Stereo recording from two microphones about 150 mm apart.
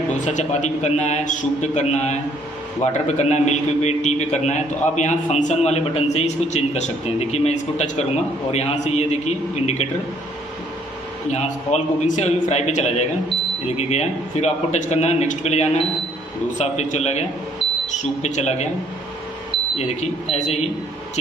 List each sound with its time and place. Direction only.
0.1 s a man's voice: 55° left (ahead or behind)
11.2 s a man's voice: 50° left (ahead or behind)
19.8 s a man's voice: 50° left (ahead or behind)